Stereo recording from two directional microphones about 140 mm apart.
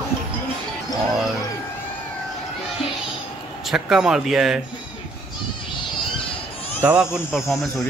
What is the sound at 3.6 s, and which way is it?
Speech, 5° right (ahead or behind).